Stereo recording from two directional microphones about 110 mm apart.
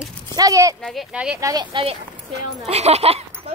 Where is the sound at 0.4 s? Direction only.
30° right (ahead or behind).